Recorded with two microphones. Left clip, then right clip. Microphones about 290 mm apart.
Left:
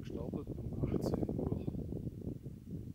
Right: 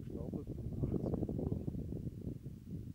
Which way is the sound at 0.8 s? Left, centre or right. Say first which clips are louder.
Left 3 dB; centre.